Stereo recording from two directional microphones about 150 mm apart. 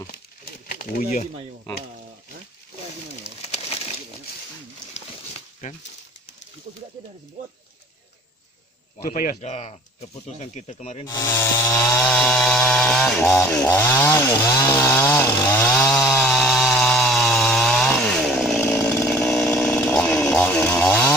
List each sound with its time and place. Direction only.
0.7 s speech: 75° left (ahead or behind)
9.0 s speech: 75° left (ahead or behind)
9.4 s speech: 45° left (ahead or behind)
11.1 s chainsaw: 20° left (ahead or behind)
12.0 s chainsaw: 5° left (ahead or behind)
13.6 s chainsaw: 15° left (ahead or behind)
18.6 s chainsaw: 15° left (ahead or behind)